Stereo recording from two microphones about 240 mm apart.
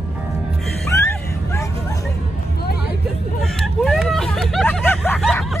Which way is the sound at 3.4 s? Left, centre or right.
Centre.